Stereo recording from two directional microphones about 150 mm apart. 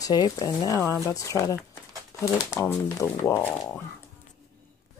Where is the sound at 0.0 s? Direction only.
25° left (ahead or behind).